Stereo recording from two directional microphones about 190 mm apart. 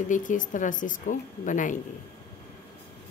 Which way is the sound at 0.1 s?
45° left (ahead or behind).